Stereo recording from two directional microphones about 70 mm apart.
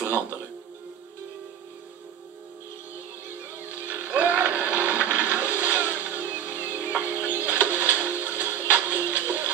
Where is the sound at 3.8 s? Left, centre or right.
Right.